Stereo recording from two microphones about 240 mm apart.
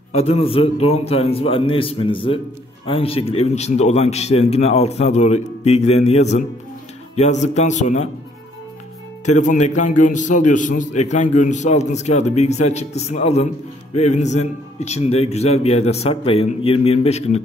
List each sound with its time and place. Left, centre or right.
0.1 s a man's voice: left
9.2 s a man's voice: left